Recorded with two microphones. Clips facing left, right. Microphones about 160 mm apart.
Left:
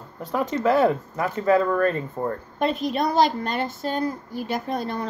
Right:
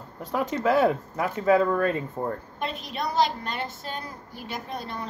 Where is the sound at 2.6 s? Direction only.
45° left (ahead or behind).